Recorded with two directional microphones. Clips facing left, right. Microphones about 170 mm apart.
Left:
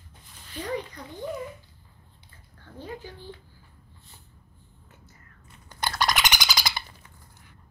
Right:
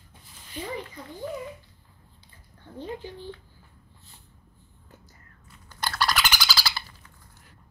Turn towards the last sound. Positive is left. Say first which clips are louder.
# even
turn(degrees=15)  # may be behind; listen again after turning